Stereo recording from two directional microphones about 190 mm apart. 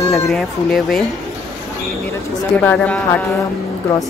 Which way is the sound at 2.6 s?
10° left (ahead or behind).